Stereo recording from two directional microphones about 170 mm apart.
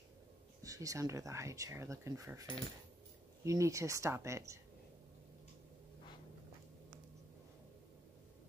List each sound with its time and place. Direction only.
0.6 s speech: 20° right (ahead or behind)
3.4 s speech: 20° right (ahead or behind)